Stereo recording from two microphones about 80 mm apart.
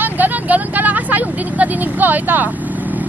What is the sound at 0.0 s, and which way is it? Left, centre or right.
Vehicle, right.